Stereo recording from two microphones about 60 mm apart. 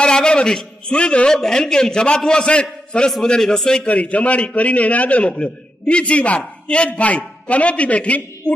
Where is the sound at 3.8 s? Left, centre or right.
Left.